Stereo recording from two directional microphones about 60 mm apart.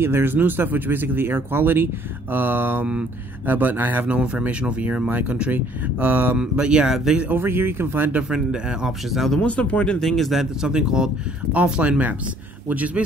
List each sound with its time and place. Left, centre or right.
0.0 s speech: right
4.1 s speech: right
6.6 s speech: centre
7.3 s speech: right
8.2 s speech: centre
9.1 s speech: centre
9.4 s speech: left
9.9 s speech: centre
10.4 s speech: centre
12.6 s speech: right